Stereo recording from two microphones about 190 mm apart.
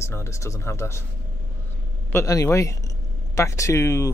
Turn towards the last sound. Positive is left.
turn(degrees=15)  # may be behind; listen again after turning